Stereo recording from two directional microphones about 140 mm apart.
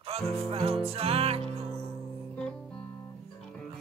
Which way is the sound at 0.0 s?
45° right (ahead or behind).